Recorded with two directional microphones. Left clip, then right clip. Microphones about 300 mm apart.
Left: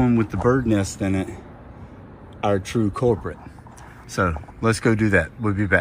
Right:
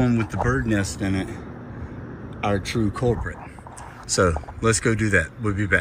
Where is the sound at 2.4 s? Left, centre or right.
Centre.